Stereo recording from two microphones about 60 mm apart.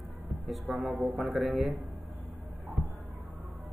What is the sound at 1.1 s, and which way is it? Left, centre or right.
Speech, centre.